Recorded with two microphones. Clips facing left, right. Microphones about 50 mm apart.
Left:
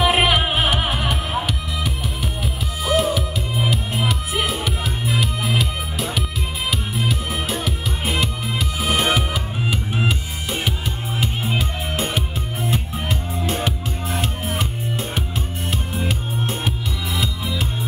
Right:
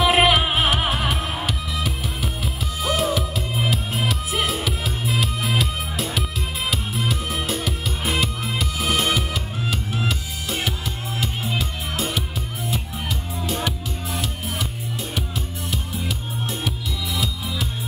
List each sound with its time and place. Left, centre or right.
0.0 s music: centre; by 14.7 s left
15.7 s music: left